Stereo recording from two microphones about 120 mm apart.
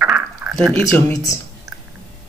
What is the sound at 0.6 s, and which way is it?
Speech, 5° left (ahead or behind).